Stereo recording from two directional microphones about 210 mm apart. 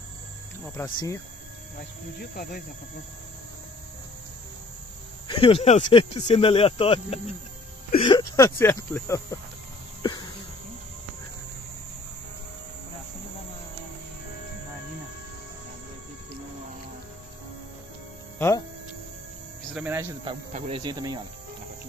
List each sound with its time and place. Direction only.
0.7 s speech: 15° left (ahead or behind)
2.1 s cricket: 45° left (ahead or behind)
5.3 s speech: 25° left (ahead or behind)
19.7 s music: 10° right (ahead or behind)
20.2 s speech: 30° right (ahead or behind)